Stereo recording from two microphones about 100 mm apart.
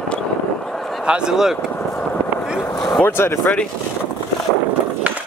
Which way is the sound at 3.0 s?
20° left (ahead or behind).